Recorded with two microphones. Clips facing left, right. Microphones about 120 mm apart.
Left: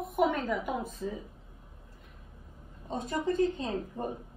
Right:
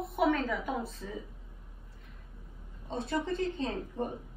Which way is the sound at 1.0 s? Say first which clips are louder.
Left 6 dB; 20° left (ahead or behind).